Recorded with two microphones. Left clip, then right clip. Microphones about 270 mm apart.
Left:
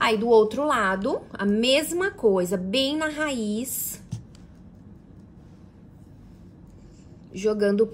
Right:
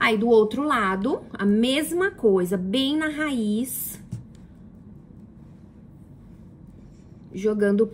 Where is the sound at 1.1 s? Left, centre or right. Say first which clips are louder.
Right 1 dB; left.